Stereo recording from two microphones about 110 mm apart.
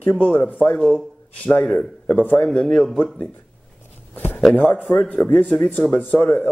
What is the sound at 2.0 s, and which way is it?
Speech, 15° left (ahead or behind).